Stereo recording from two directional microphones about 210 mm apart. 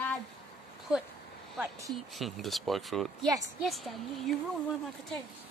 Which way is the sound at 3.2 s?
15° right (ahead or behind).